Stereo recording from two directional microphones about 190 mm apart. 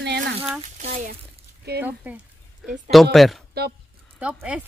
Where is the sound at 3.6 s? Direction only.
55° right (ahead or behind).